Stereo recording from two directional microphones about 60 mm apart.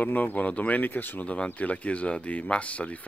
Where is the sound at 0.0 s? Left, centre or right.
Left.